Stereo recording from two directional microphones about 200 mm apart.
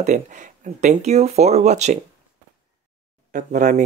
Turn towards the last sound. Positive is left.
turn(degrees=-40)  # may be behind; listen again after turning